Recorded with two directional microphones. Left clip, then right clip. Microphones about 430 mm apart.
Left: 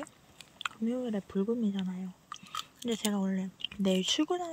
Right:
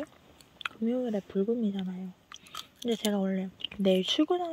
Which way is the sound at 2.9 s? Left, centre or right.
Centre.